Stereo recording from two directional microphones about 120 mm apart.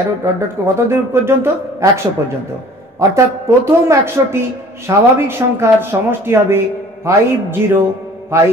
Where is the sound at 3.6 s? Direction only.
20° right (ahead or behind).